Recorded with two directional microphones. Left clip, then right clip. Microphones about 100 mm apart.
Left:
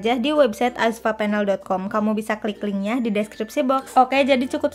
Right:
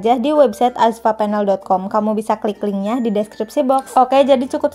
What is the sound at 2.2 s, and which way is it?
A woman's voice, 25° right (ahead or behind).